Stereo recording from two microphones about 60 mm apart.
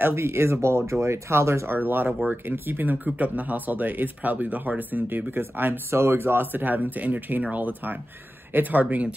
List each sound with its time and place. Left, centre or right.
0.0 s speech: right
1.7 s speech: right